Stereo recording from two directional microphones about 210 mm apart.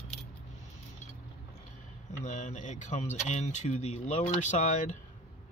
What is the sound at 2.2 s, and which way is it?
Speech, 35° left (ahead or behind).